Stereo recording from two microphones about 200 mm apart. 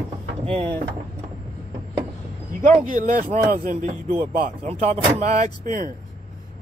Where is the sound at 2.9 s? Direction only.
40° right (ahead or behind).